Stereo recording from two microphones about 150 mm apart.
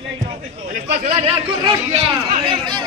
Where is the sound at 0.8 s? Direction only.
40° right (ahead or behind).